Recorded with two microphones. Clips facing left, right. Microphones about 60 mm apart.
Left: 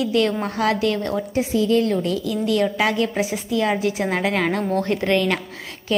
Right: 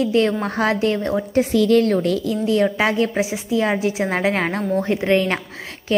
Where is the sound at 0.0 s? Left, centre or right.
Right.